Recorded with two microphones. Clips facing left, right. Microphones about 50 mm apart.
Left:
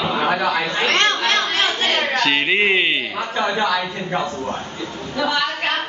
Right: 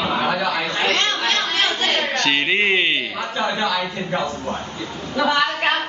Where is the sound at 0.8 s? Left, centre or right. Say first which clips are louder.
Left 3 dB; left.